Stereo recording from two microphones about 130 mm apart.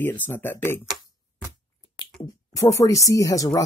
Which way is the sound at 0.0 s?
15° left (ahead or behind).